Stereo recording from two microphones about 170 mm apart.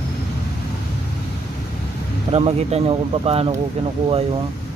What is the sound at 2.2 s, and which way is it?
Speech, 35° right (ahead or behind).